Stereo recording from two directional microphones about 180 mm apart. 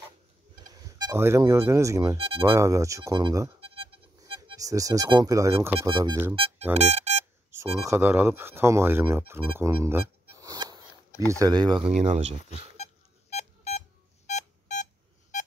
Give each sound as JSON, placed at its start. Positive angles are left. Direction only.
{"t": 0.8, "sound": "speech", "side_deg": -20}
{"t": 2.1, "sound": "speech", "side_deg": -30}
{"t": 2.4, "sound": "speech", "side_deg": -15}
{"t": 4.2, "sound": "speech", "side_deg": -20}
{"t": 5.8, "sound": "speech", "side_deg": -30}
{"t": 6.7, "sound": "music", "side_deg": -35}
{"t": 7.5, "sound": "speech", "side_deg": -15}
{"t": 11.9, "sound": "speech", "side_deg": -40}
{"t": 12.7, "sound": "beep", "side_deg": 35}